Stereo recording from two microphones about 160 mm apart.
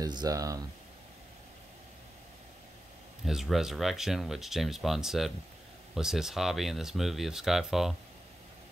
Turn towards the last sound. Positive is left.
turn(degrees=0)  # may be behind; listen again after turning